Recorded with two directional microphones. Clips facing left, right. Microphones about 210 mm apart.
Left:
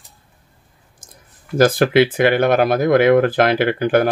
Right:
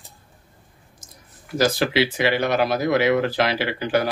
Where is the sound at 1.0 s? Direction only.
50° left (ahead or behind).